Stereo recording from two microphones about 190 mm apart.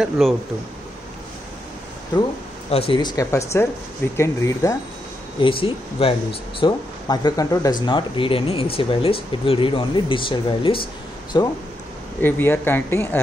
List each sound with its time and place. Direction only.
0.2 s speech: centre (ahead or behind)
2.9 s speech: 20° left (ahead or behind)
5.4 s speech: 30° left (ahead or behind)
12.2 s speech: 10° left (ahead or behind)